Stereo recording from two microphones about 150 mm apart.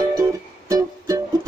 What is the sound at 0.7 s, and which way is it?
Music, 20° right (ahead or behind).